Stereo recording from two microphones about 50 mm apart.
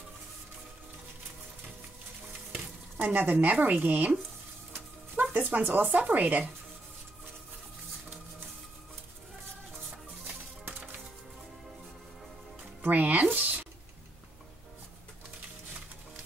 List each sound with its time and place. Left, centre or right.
2.5 s speech: right
5.3 s speech: right
12.8 s speech: right